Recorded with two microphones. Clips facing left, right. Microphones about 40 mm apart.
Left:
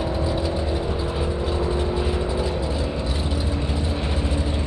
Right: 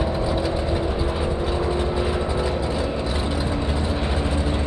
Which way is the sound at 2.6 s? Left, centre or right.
Right.